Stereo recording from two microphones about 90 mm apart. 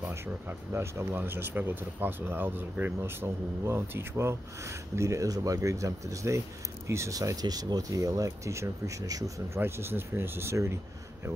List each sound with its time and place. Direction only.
0.0 s speech: 25° right (ahead or behind); by 9.6 s 40° right (ahead or behind)
9.6 s speech: 25° right (ahead or behind)